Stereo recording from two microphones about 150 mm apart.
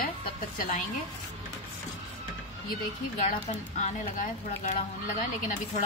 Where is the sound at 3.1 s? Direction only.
55° left (ahead or behind).